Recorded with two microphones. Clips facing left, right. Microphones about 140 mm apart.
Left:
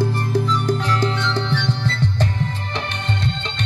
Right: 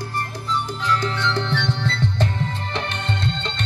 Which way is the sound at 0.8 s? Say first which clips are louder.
Left 1 dB; 45° left (ahead or behind).